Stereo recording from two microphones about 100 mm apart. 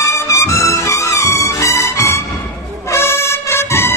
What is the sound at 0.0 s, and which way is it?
Music, 30° left (ahead or behind).